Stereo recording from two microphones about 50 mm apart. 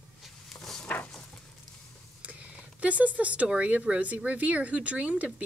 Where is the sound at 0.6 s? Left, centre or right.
Centre.